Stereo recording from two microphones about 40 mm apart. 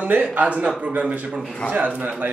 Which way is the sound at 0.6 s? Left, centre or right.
Right.